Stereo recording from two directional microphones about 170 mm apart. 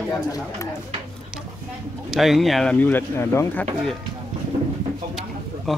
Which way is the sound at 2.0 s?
Centre (ahead or behind).